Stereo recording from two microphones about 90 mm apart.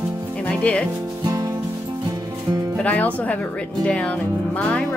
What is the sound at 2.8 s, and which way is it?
Speech, 15° left (ahead or behind).